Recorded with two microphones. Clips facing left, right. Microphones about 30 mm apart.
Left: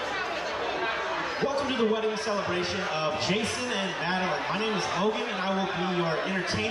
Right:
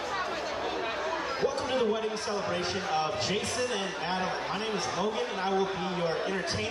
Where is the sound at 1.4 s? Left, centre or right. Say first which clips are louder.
Left 2 dB; centre.